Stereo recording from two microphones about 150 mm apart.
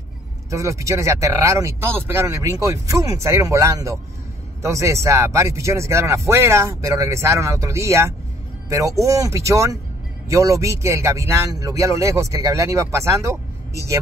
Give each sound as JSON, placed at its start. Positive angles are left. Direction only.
{"t": 0.5, "sound": "speech", "side_deg": -20}